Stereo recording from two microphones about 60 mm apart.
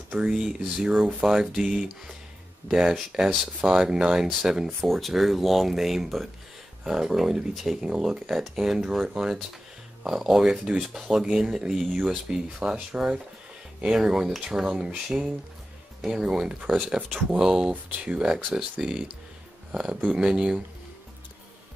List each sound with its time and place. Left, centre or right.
0.1 s speech: centre
4.6 s speech: centre
6.8 s speech: centre
7.5 s speech: centre
7.8 s speech: centre
11.8 s speech: centre
12.1 s speech: centre